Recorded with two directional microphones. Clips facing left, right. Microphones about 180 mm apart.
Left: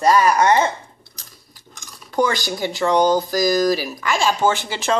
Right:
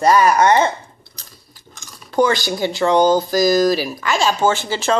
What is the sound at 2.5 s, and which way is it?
Speech, 25° right (ahead or behind).